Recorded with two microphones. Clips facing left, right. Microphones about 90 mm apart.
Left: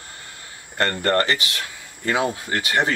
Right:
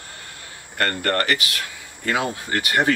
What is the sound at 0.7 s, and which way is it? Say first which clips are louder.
Speech: left 2 dB; 25° left (ahead or behind).